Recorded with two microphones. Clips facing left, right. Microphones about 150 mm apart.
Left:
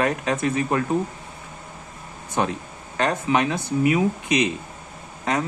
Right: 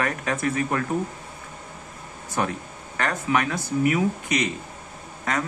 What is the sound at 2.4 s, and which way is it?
A man's voice, 25° left (ahead or behind).